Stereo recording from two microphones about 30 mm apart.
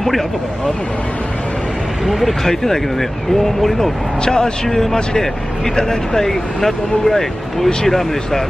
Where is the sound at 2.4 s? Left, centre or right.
Centre.